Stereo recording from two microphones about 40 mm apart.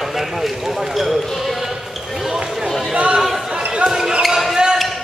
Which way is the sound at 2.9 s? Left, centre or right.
Right.